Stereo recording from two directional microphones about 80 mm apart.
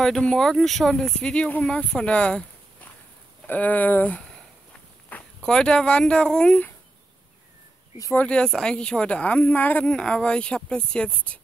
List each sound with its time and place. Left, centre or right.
0.0 s speech: centre
8.3 s speech: centre